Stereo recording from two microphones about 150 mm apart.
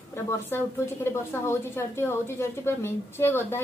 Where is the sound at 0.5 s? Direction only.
15° left (ahead or behind).